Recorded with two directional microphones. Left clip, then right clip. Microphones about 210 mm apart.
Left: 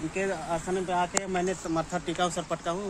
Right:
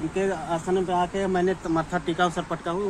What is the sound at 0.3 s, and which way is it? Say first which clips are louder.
Speech: right 4 dB; 20° left (ahead or behind).